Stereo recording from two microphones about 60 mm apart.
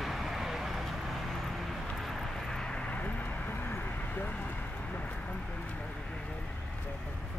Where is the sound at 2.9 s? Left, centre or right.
Left.